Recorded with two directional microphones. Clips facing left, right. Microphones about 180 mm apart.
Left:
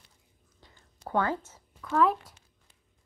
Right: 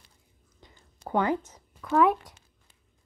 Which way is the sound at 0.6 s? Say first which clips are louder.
Right 3 dB; 15° right (ahead or behind).